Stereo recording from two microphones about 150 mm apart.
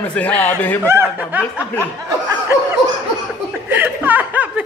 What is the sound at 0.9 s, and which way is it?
Speech, 15° right (ahead or behind).